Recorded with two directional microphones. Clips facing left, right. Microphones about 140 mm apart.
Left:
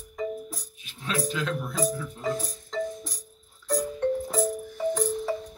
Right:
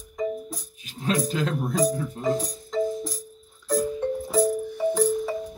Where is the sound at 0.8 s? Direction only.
40° right (ahead or behind).